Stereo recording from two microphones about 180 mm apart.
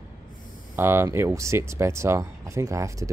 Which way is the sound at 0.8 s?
15° right (ahead or behind).